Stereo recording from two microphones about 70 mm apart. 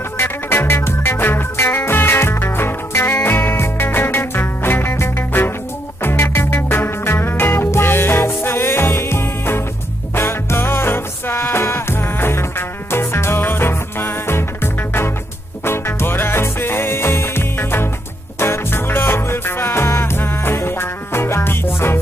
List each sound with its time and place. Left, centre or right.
0.2 s music: left